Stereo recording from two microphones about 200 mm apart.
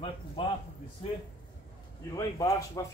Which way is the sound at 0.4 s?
25° left (ahead or behind).